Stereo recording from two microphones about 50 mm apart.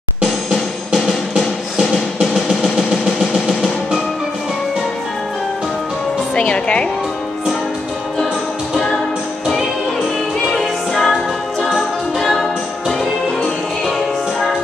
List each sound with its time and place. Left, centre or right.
0.9 s music: centre
2.1 s a sound: centre
3.4 s music: centre
6.3 s a woman's voice: left
10.4 s music: centre